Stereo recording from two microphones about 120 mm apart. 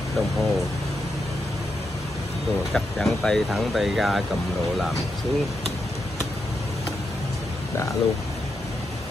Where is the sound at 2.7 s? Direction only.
5° left (ahead or behind).